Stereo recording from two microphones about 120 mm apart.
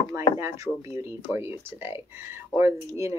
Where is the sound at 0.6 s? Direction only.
25° right (ahead or behind).